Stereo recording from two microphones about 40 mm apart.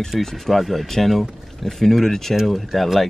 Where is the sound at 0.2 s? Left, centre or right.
Centre.